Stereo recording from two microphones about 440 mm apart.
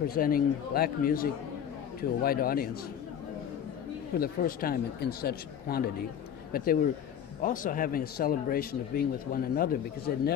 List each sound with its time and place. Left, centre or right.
0.0 s speech: centre
4.2 s speech: centre